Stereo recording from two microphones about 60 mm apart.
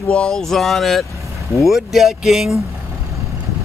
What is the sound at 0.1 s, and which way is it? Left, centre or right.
Speech, centre.